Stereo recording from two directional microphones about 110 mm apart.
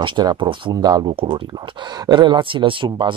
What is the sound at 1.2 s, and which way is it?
Speech, 50° right (ahead or behind).